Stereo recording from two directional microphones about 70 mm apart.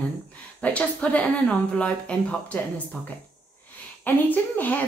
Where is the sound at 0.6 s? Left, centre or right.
Centre.